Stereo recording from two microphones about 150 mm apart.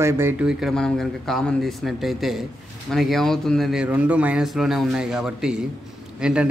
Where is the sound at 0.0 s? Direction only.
15° right (ahead or behind).